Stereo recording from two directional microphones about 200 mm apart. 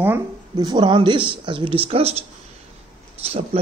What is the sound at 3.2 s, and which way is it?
Speech, 30° right (ahead or behind).